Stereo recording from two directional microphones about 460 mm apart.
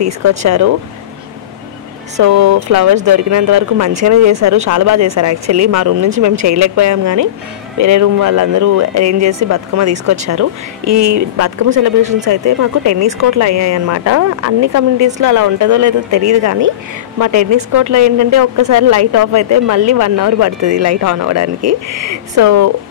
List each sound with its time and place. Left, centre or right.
0.0 s speech: right
2.1 s speech: right
12.0 s speech: centre
12.3 s speech: right